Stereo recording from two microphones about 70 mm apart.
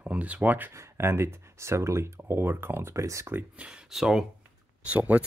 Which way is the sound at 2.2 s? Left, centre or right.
Right.